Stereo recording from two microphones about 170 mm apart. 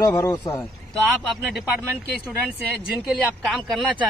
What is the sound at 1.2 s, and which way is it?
Speech, centre (ahead or behind).